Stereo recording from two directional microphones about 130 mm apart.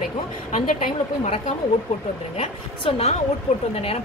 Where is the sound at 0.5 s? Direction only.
80° left.